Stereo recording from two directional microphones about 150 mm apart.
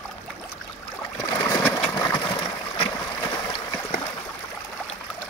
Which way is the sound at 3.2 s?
30° left (ahead or behind).